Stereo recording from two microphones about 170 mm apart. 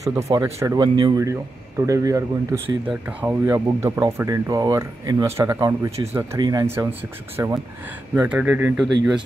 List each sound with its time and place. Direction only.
0.0 s speech: 20° right (ahead or behind)
2.9 s speech: 10° right (ahead or behind)